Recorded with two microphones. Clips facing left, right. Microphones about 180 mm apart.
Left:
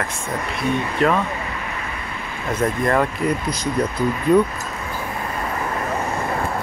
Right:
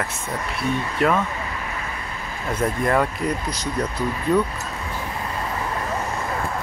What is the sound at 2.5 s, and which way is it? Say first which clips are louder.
Speech: left 2 dB; 5° right (ahead or behind).